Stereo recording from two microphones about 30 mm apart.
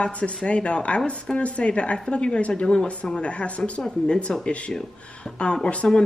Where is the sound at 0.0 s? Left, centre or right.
Left.